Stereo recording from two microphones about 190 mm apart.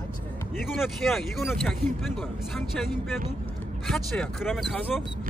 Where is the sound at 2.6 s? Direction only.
Centre (ahead or behind).